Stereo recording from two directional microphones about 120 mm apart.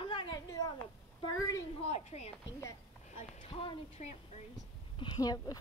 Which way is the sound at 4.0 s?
90° left.